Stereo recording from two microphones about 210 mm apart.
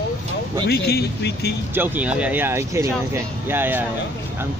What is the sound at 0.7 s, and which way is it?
Speech, 50° left (ahead or behind).